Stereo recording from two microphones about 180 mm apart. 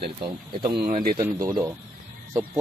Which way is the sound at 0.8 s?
45° right (ahead or behind).